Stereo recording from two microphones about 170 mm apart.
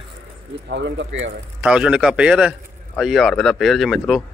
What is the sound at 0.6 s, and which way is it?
Speech, 90° right.